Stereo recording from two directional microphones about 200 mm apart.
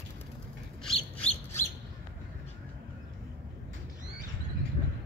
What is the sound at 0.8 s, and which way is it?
Squawk, 5° left (ahead or behind).